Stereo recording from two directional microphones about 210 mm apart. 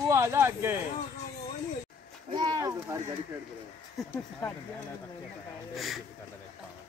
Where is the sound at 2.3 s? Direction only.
20° right (ahead or behind).